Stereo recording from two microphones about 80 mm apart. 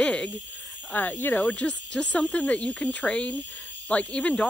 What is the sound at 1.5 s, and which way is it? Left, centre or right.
Speech, centre.